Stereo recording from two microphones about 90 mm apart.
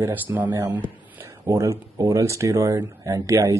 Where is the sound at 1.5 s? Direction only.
30° right (ahead or behind).